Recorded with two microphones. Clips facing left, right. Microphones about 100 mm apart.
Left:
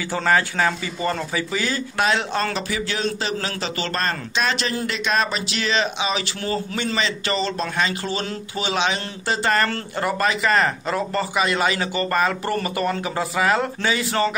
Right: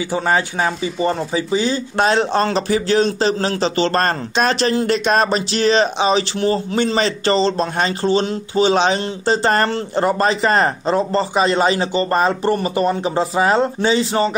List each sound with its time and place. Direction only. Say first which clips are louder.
0.1 s speech: even; 25° right (ahead or behind)
4.0 s speech: right 6 dB; 40° right (ahead or behind); by 14.3 s 25° right (ahead or behind)